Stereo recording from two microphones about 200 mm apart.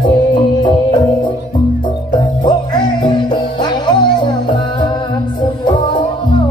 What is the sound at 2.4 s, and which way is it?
Music, 25° left (ahead or behind).